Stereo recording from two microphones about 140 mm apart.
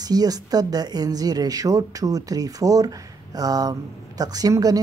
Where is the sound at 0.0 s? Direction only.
25° right (ahead or behind).